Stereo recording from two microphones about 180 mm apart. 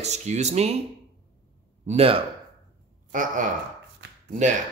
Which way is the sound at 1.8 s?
35° right (ahead or behind).